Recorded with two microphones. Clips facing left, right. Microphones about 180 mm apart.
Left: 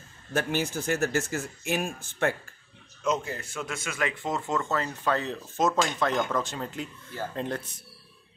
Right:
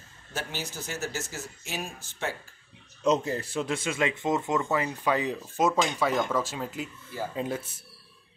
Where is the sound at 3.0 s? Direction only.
35° right (ahead or behind); by 7.7 s 5° right (ahead or behind).